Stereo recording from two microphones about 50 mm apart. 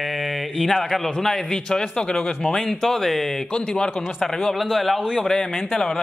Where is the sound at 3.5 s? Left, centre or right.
Centre.